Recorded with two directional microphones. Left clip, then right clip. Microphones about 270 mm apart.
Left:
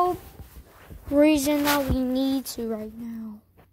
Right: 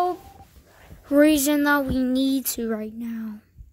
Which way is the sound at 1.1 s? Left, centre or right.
Right.